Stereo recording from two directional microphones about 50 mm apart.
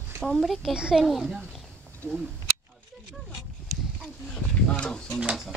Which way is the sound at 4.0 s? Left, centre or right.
Centre.